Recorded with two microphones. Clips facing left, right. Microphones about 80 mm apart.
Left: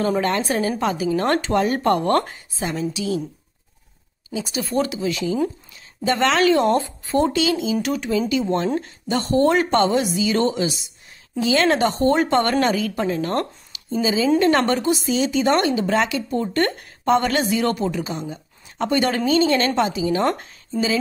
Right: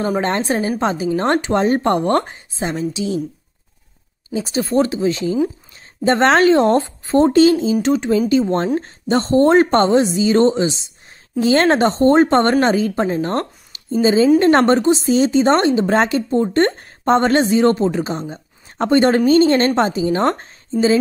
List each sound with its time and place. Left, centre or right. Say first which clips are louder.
0.2 s a woman's voice: right 2 dB; right
4.3 s speech: right 6 dB; right
7.7 s a woman's voice: right 6 dB; right
11.3 s speech: right 4 dB; right